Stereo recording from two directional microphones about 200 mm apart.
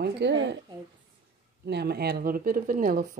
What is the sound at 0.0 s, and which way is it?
Speech, 60° right (ahead or behind).